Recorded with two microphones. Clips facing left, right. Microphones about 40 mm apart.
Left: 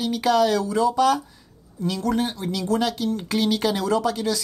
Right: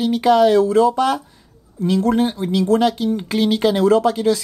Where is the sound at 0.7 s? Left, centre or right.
Right.